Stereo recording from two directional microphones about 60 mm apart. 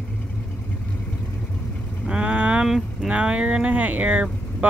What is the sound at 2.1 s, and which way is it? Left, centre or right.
Vehicle, right.